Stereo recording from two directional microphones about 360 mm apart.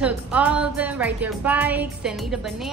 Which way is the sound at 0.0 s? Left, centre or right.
Centre.